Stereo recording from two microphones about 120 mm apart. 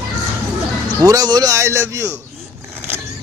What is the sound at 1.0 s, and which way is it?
A man's voice, 30° right (ahead or behind).